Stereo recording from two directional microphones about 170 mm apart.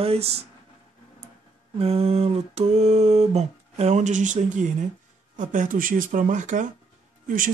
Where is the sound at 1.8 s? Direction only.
35° right (ahead or behind).